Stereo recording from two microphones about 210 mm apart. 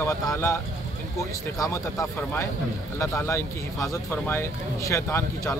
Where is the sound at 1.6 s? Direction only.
15° left (ahead or behind).